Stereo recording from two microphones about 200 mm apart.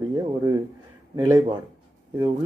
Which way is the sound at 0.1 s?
15° right (ahead or behind).